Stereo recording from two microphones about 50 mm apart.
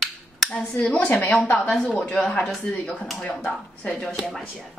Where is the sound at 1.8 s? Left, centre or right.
Centre.